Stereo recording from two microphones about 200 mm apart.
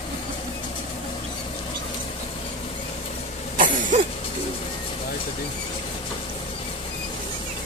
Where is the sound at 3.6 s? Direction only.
40° right (ahead or behind).